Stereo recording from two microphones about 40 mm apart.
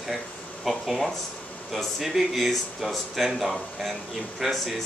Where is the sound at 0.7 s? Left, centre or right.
Centre.